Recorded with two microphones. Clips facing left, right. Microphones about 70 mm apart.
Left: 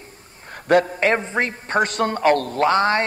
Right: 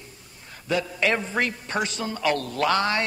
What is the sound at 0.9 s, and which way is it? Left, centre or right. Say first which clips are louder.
A man's voice: left 4 dB; left.